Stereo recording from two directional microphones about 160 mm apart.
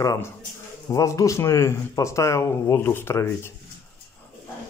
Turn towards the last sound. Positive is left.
turn(degrees=15)  # may be behind; listen again after turning